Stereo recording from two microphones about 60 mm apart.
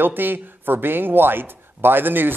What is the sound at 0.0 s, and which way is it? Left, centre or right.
A man's voice, right.